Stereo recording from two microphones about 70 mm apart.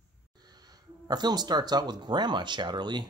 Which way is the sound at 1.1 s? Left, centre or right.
Right.